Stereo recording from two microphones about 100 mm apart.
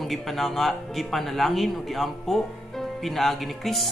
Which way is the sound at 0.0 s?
Centre (ahead or behind).